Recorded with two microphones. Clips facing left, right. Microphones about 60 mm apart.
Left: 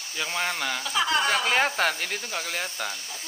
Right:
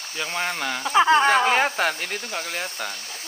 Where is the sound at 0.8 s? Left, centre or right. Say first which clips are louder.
Right 9 dB; right.